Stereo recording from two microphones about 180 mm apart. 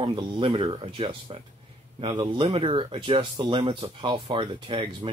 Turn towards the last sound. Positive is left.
turn(degrees=-30)  # may be behind; listen again after turning